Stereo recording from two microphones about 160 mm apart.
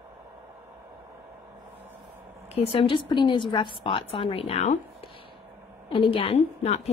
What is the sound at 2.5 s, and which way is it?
A woman's voice, 40° left (ahead or behind).